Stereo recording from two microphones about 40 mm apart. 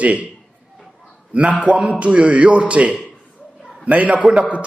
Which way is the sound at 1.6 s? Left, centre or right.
Right.